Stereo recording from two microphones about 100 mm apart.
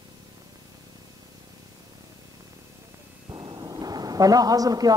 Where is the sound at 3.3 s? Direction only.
45° right (ahead or behind).